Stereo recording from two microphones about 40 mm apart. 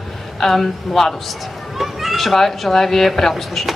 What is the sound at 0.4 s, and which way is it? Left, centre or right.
Speech, centre.